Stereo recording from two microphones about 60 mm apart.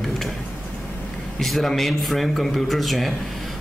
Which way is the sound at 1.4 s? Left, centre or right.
Centre.